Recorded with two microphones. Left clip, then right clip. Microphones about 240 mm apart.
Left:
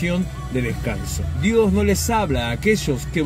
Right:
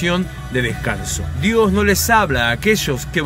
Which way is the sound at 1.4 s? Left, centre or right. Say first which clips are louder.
Right 3 dB; centre.